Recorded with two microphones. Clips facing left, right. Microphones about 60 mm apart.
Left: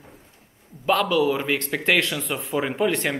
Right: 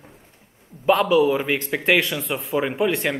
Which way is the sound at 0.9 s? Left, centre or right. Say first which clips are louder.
Right 3 dB; centre.